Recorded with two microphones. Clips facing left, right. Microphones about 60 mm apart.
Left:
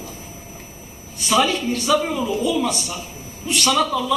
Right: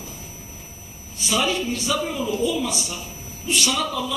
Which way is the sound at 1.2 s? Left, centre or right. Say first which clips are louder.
Left 4 dB; left.